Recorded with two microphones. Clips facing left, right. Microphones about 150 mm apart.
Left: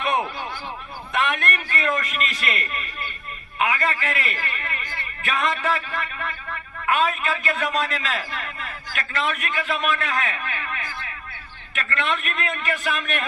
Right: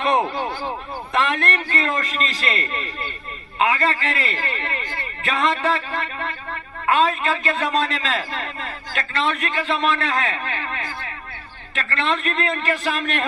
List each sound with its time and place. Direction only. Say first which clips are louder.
0.0 s a man's voice: right 4 dB; 35° right (ahead or behind)